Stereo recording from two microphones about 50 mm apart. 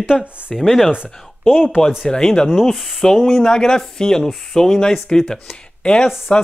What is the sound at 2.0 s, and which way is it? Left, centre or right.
Speech, centre.